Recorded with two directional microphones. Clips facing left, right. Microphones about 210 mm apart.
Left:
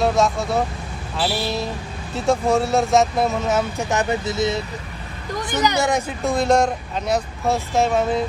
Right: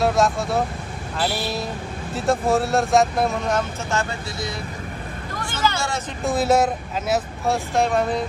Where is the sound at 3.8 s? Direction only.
20° left (ahead or behind).